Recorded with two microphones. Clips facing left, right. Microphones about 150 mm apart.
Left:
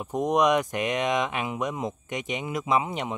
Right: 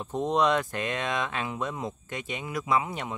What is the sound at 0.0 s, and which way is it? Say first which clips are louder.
Speech: left 2 dB; 15° left (ahead or behind).